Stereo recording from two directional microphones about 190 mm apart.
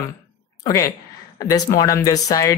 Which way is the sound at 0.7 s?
15° left (ahead or behind).